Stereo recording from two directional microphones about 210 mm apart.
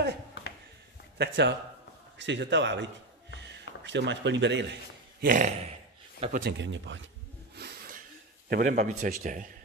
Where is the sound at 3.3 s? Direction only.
55° right (ahead or behind).